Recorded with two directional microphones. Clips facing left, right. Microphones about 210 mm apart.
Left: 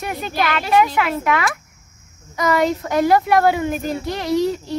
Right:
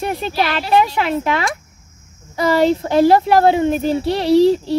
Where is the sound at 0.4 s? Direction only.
30° right (ahead or behind).